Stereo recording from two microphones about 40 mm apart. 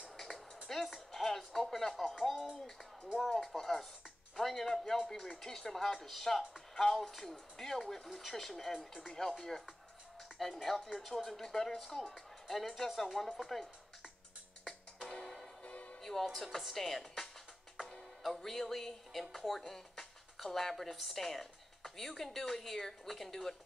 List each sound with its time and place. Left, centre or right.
0.7 s music: centre
3.3 s speech: centre
10.4 s speech: centre
15.0 s music: centre
15.6 s music: left
16.0 s speech: centre